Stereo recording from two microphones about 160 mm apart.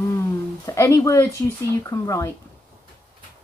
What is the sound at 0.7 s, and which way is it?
Speech, 20° left (ahead or behind).